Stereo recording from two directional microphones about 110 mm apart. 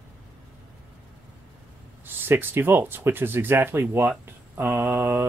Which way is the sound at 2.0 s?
20° right (ahead or behind).